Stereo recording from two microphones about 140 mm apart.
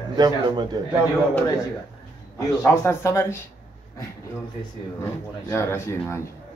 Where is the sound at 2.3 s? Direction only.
20° left (ahead or behind).